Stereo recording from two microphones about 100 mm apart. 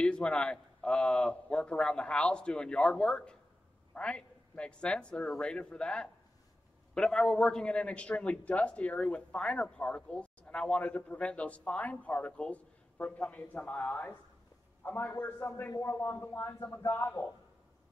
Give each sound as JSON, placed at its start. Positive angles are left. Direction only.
{"t": 0.0, "sound": "a man's voice", "side_deg": 10}